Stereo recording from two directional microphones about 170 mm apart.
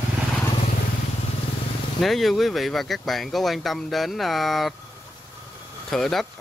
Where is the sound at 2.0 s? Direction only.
Centre (ahead or behind).